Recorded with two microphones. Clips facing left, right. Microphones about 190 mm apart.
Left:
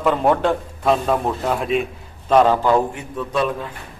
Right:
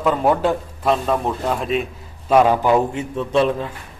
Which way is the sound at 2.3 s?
10° right (ahead or behind).